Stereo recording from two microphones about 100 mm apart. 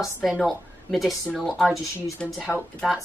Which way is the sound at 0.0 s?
Centre (ahead or behind).